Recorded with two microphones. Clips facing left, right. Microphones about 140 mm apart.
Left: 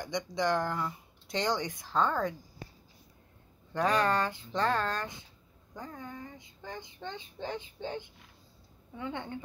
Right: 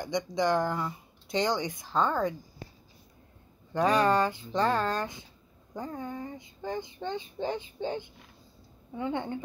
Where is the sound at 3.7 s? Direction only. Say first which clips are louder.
Right 4 dB; 5° right (ahead or behind).